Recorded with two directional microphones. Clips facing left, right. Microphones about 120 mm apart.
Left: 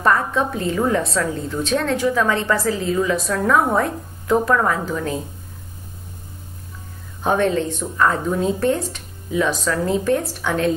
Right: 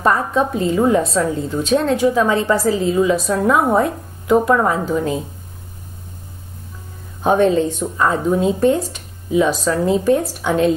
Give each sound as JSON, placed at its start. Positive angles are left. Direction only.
{"t": 0.0, "sound": "a woman's voice", "side_deg": -20}
{"t": 7.2, "sound": "a woman's voice", "side_deg": -20}